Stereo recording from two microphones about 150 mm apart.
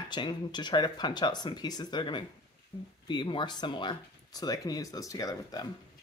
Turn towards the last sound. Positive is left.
turn(degrees=25)  # may be behind; listen again after turning